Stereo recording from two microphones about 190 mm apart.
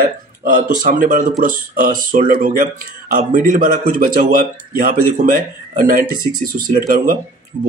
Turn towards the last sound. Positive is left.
turn(degrees=-40)  # may be behind; listen again after turning